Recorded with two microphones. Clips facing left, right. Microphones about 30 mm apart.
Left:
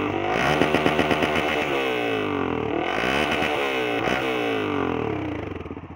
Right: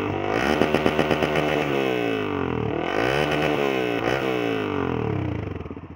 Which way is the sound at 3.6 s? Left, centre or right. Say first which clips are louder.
Right 1 dB; left.